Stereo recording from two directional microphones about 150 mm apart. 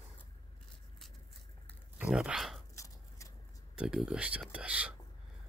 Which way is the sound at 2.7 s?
20° left (ahead or behind).